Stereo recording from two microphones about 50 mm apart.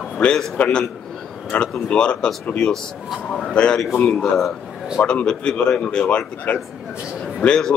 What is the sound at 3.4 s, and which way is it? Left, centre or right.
Speech, centre.